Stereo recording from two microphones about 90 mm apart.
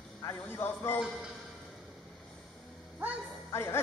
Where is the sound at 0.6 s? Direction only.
25° left (ahead or behind).